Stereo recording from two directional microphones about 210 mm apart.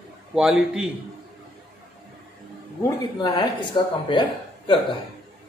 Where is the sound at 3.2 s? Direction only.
20° left (ahead or behind).